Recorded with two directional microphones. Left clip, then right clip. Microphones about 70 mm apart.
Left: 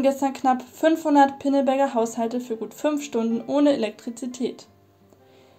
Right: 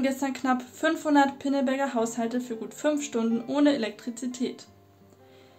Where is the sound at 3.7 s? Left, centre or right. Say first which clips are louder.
Left 4 dB; left.